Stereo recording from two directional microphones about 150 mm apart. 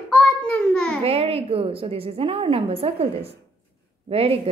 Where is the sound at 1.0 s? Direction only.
40° right (ahead or behind).